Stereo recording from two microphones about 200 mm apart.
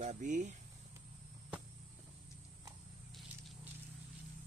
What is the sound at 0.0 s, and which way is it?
Speech, 40° right (ahead or behind).